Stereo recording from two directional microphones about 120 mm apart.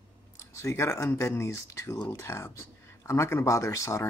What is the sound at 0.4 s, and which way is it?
Speech, 25° left (ahead or behind).